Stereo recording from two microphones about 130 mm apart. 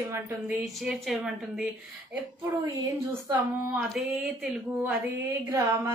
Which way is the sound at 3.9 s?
Centre (ahead or behind).